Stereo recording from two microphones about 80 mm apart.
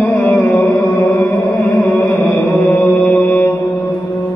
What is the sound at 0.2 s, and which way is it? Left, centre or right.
Music, centre.